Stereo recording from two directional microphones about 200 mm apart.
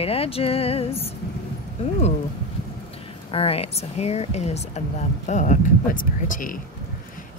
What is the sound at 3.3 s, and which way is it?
Speech, 30° left (ahead or behind).